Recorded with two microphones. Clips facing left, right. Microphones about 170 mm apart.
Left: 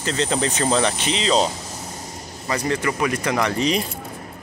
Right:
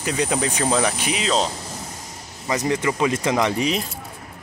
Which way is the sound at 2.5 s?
20° right (ahead or behind).